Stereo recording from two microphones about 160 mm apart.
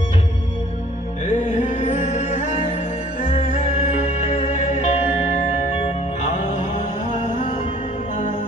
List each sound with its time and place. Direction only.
1.2 s music: 50° left (ahead or behind)
7.1 s music: 55° left (ahead or behind)